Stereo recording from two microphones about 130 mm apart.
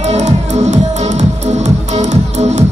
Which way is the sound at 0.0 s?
60° right (ahead or behind).